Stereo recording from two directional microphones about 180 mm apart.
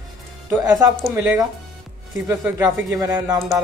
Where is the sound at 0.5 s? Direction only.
10° right (ahead or behind).